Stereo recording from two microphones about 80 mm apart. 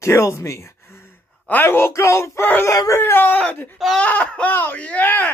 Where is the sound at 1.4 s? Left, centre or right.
Left.